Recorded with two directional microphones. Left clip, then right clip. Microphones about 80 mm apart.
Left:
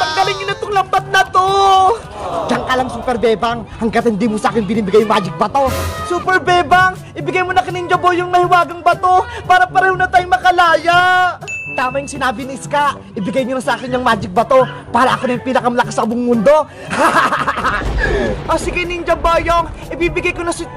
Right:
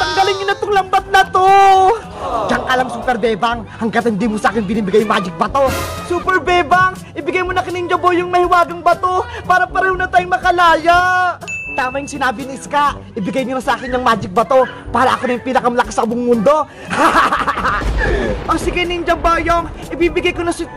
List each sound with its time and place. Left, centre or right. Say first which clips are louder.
0.0 s music: right 1 dB; centre
1.1 s a man's voice: right 3 dB; right
13.3 s a man's voice: left 1 dB; right
14.6 s a man's voice: left 1 dB; right
15.0 s a man's voice: even; right
16.9 s a man's voice: even; right
17.6 s a man's voice: even; right